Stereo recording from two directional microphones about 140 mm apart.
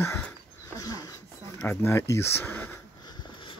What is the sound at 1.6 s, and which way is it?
Speech, 15° left (ahead or behind).